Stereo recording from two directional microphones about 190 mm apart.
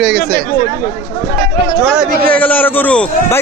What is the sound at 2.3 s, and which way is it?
A man's voice, 10° left (ahead or behind).